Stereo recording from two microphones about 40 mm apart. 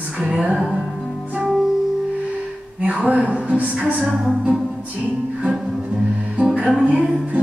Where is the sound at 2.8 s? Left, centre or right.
Right.